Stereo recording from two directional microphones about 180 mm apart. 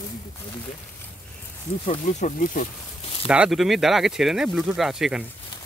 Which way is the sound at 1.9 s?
40° left (ahead or behind).